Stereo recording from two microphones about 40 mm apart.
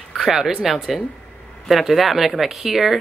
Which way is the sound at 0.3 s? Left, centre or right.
Centre.